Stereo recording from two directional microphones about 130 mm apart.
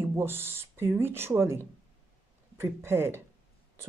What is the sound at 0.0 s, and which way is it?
Speech, 20° right (ahead or behind).